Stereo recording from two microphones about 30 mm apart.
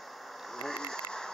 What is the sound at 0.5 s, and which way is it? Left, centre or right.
Speech, centre.